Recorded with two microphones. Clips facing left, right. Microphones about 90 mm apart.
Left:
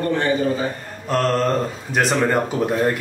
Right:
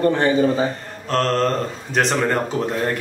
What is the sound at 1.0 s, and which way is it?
A man's voice, 10° left (ahead or behind).